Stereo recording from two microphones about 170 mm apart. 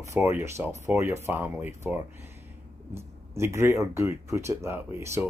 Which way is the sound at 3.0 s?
15° right (ahead or behind).